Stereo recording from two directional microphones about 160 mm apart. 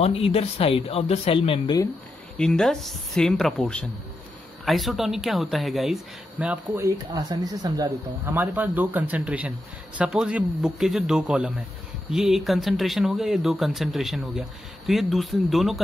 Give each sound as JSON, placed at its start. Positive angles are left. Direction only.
{"t": 0.0, "sound": "speech", "side_deg": 40}
{"t": 2.3, "sound": "speech", "side_deg": 5}
{"t": 6.4, "sound": "speech", "side_deg": -10}
{"t": 7.2, "sound": "speech", "side_deg": -25}
{"t": 8.4, "sound": "speech", "side_deg": -10}